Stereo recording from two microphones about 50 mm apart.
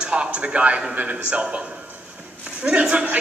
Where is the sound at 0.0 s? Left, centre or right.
Right.